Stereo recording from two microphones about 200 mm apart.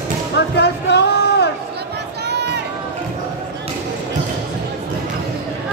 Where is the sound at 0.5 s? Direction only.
55° left (ahead or behind).